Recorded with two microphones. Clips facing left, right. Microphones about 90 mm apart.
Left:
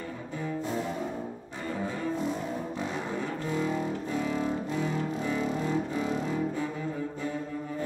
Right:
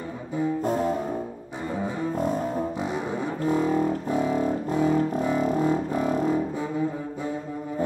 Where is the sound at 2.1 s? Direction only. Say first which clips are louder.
Right 5 dB; 50° right (ahead or behind).